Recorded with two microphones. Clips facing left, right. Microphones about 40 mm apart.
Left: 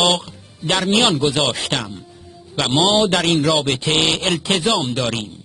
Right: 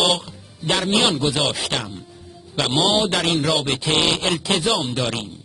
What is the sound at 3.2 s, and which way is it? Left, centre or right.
Speech, centre.